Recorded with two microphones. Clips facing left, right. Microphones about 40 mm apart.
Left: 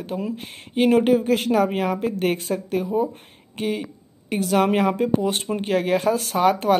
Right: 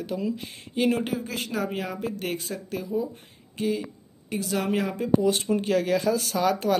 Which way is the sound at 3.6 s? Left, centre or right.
Left.